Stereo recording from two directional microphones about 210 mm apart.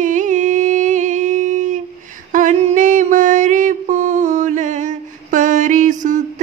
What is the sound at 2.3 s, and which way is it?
Mantra, 35° right (ahead or behind).